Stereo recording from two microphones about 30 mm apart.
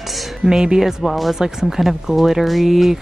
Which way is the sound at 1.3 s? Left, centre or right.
Centre.